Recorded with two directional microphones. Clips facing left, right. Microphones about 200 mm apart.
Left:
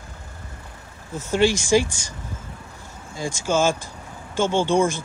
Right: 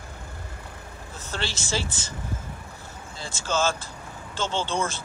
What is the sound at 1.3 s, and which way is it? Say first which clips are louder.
Speech: left 13 dB; 10° left (ahead or behind).